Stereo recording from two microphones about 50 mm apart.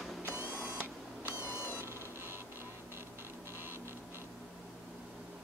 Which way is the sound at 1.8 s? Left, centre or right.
Right.